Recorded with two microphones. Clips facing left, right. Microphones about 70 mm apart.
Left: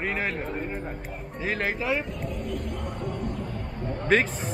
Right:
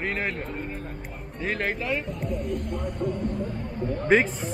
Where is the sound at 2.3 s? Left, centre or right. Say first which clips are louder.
Right 3 dB; right.